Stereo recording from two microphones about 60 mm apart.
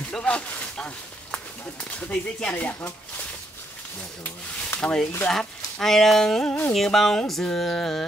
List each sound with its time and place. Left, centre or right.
0.1 s speech: centre
1.9 s speech: left
4.2 s speech: left
5.3 s speech: centre
6.7 s music: centre